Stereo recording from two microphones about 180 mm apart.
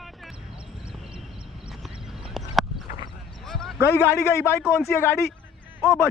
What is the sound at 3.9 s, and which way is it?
A man's voice, 15° left (ahead or behind).